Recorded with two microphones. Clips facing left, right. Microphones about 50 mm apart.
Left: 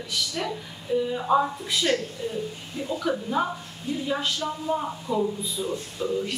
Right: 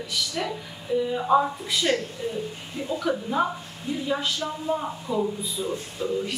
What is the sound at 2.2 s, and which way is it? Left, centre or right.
Speech, centre.